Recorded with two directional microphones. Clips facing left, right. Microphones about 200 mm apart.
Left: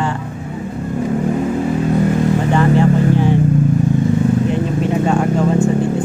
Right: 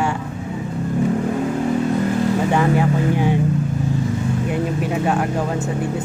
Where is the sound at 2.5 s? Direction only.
10° right (ahead or behind).